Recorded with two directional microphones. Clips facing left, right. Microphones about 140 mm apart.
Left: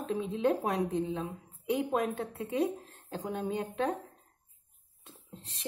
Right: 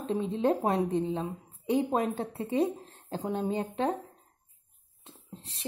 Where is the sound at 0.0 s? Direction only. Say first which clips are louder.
Right 2 dB; 30° right (ahead or behind).